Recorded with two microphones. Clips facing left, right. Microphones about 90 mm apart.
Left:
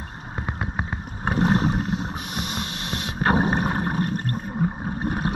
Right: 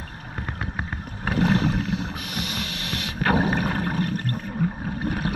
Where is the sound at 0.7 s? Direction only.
20° left (ahead or behind).